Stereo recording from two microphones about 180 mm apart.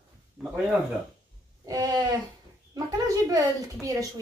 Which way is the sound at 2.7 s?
20° right (ahead or behind).